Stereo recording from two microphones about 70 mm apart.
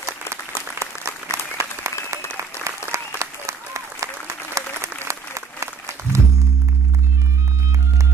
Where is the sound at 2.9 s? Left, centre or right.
Right.